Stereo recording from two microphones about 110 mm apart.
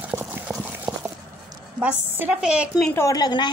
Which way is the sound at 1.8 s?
15° right (ahead or behind).